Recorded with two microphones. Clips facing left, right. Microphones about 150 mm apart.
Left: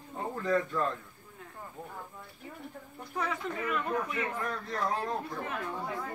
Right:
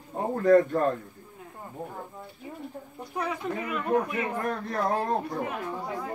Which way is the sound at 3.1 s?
15° right (ahead or behind).